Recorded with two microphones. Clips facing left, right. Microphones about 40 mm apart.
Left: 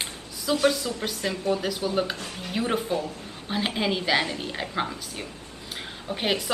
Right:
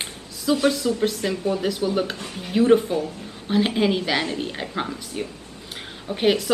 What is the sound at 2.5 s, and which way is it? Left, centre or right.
Speech, centre.